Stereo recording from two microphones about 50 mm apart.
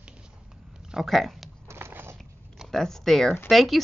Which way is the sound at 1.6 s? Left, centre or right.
Right.